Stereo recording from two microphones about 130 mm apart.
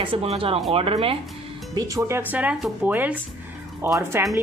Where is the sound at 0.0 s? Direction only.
45° right (ahead or behind).